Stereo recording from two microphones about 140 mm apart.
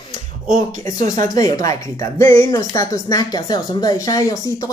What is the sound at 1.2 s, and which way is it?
Speech, 25° left (ahead or behind).